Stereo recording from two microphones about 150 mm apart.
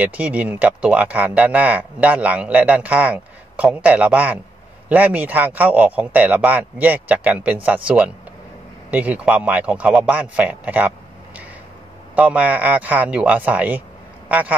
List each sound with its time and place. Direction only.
0.0 s speech: 10° right (ahead or behind)
12.2 s speech: 10° right (ahead or behind)